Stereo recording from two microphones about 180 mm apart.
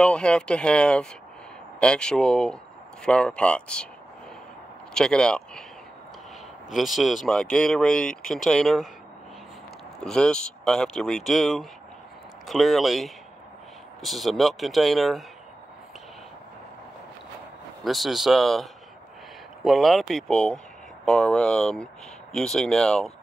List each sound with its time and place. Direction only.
0.0 s speech: 5° left (ahead or behind)
4.9 s speech: 5° left (ahead or behind)
6.7 s speech: centre (ahead or behind)
9.9 s speech: 5° left (ahead or behind)
17.8 s speech: centre (ahead or behind)